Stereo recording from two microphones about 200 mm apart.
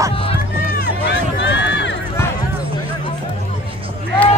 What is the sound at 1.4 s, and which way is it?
Run, 60° left (ahead or behind).